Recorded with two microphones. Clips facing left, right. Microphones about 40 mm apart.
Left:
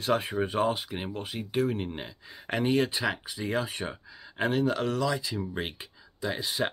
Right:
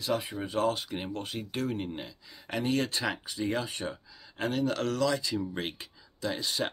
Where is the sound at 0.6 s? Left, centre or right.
Centre.